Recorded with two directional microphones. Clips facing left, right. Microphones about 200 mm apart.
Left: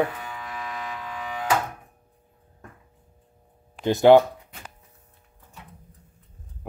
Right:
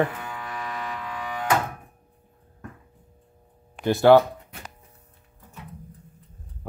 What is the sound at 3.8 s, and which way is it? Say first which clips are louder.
Speech: left 1 dB; 20° left (ahead or behind).